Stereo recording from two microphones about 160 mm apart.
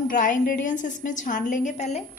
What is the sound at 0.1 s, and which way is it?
A woman's voice, 55° left (ahead or behind).